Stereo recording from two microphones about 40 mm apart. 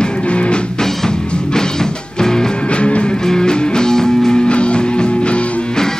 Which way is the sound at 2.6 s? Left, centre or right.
Left.